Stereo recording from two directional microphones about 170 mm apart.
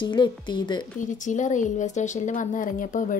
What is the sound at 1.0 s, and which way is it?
Speech, 45° left (ahead or behind).